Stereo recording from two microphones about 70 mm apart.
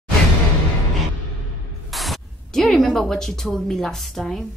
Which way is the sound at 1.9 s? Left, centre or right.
Centre.